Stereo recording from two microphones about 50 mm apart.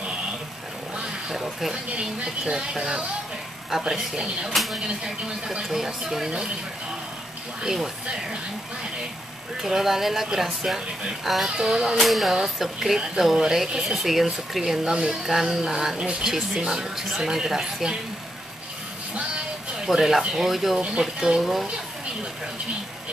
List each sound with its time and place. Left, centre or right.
1.3 s speech: centre
1.9 s speech: centre
5.7 s speech: centre
7.6 s speech: centre
9.6 s speech: centre
11.6 s speech: centre
12.0 s speech: centre
19.8 s speech: centre